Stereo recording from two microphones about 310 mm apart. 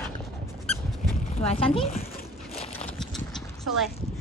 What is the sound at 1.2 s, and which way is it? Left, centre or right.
Speech, left.